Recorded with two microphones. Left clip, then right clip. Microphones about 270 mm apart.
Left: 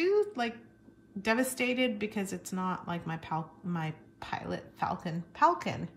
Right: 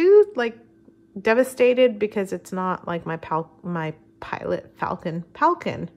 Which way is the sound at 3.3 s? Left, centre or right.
Right.